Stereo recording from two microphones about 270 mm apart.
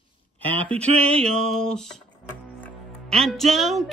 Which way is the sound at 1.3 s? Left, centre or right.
Centre.